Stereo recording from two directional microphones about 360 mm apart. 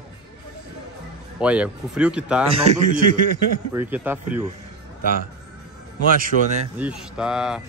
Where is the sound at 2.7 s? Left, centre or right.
Right.